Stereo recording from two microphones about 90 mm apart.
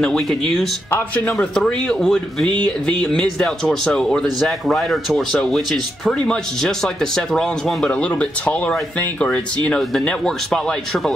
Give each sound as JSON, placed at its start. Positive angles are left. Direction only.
{"t": 0.0, "sound": "speech", "side_deg": 5}